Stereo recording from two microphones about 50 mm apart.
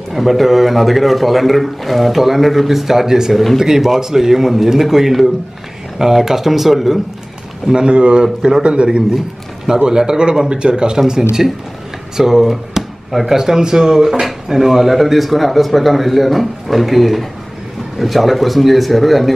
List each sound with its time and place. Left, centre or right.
0.1 s a man's voice: centre
7.6 s a man's voice: centre